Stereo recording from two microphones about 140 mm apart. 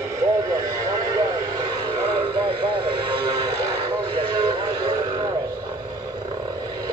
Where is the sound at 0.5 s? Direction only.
25° right (ahead or behind).